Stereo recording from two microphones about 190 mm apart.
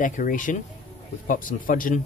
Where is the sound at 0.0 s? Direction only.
45° left (ahead or behind).